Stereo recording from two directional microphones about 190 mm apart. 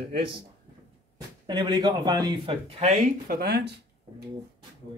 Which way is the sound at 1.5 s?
20° right (ahead or behind).